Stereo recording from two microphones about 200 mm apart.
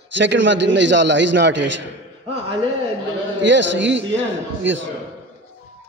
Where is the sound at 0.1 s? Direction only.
65° right (ahead or behind).